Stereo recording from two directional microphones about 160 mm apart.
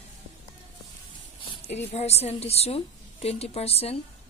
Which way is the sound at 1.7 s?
40° left (ahead or behind).